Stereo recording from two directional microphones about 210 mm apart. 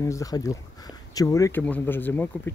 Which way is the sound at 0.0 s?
15° left (ahead or behind).